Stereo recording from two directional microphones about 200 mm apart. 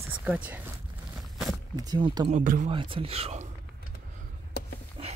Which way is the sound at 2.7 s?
25° right (ahead or behind).